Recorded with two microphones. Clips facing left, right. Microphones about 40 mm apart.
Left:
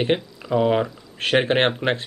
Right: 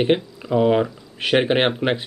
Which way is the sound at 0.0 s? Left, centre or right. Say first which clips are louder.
Right 3 dB; centre.